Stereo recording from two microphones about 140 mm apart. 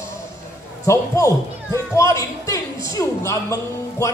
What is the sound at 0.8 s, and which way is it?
A man's voice, 20° left (ahead or behind).